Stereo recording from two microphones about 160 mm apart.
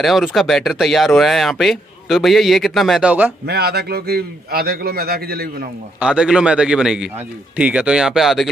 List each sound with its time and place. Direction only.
0.0 s speech: centre (ahead or behind)
3.4 s a man's voice: 80° right
5.9 s speech: 5° right (ahead or behind)